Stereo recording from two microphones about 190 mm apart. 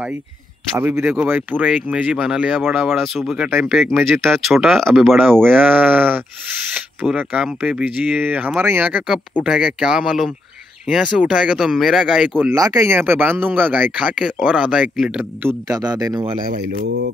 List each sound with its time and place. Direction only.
0.7 s speech: 10° right (ahead or behind); by 5.6 s 5° left (ahead or behind)
5.6 s speech: 10° right (ahead or behind)
12.4 s speech: 15° right (ahead or behind)
15.7 s speech: 20° right (ahead or behind)
16.5 s speech: 60° right (ahead or behind)